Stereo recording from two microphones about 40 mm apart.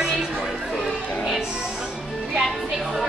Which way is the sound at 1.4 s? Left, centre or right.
Centre.